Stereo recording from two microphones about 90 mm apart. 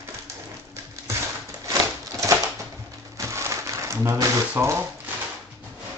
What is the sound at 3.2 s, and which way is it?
Crumpling, 35° right (ahead or behind).